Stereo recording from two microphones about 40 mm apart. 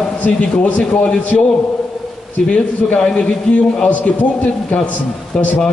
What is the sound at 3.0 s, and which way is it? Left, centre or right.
Speech, left.